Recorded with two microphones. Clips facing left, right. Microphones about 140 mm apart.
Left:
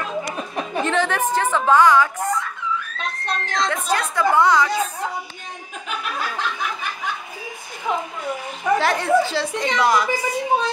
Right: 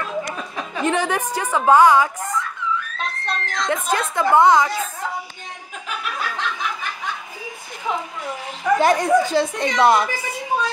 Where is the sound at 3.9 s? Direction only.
20° right (ahead or behind).